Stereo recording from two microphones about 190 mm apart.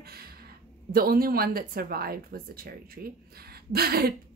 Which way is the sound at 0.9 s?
50° right (ahead or behind).